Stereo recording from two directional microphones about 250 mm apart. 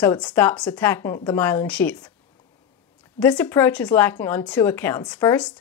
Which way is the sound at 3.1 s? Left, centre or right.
Centre.